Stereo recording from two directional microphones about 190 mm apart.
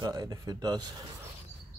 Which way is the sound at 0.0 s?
20° right (ahead or behind).